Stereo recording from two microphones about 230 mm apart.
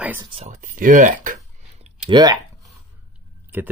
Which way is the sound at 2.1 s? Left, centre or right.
Centre.